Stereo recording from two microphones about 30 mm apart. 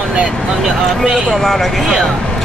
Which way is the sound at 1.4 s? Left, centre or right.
Centre.